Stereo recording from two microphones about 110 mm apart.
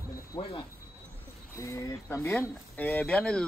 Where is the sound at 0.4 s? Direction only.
50° left (ahead or behind).